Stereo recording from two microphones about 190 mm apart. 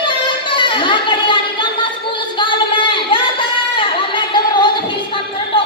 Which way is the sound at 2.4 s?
25° left (ahead or behind).